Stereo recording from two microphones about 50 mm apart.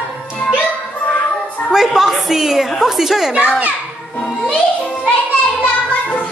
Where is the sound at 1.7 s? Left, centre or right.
Centre.